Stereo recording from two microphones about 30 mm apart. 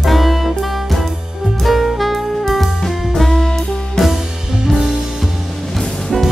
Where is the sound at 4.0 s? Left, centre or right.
Centre.